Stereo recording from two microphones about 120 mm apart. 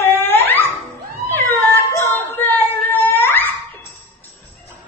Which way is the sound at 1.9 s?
25° left (ahead or behind).